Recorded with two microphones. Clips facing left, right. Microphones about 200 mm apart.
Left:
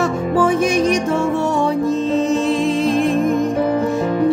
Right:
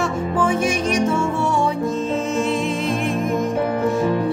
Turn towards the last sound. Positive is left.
turn(degrees=35)  # may be behind; listen again after turning